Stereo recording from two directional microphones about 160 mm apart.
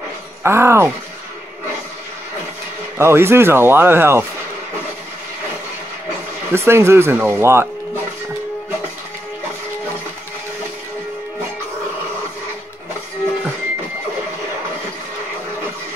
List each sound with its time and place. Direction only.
0.4 s speech: 15° right (ahead or behind)
3.0 s speech: 15° right (ahead or behind)
6.5 s speech: 15° right (ahead or behind)